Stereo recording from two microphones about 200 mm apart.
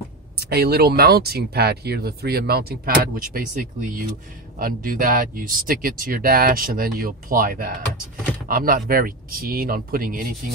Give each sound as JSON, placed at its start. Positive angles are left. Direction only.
{"t": 0.4, "sound": "speech", "side_deg": -50}